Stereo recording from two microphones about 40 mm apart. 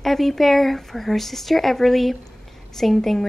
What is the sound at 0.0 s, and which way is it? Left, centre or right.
A woman's voice, centre.